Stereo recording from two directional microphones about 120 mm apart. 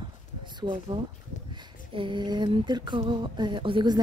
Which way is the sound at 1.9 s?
45° right (ahead or behind).